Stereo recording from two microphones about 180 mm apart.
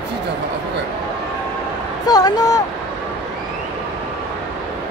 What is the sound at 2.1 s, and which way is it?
Speech, 20° left (ahead or behind).